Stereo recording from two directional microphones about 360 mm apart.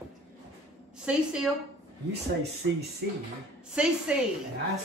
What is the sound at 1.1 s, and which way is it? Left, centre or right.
Speech, centre.